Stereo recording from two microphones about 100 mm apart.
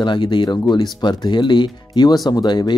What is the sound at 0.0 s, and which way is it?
Speech, 50° left (ahead or behind).